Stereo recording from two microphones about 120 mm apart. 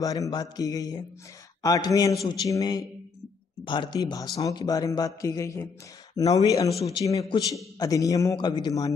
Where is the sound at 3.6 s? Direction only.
40° left (ahead or behind).